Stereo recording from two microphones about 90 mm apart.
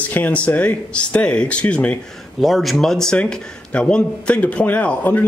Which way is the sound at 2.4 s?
Centre (ahead or behind).